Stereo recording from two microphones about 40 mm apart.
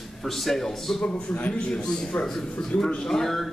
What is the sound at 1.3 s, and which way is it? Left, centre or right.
Speech, left.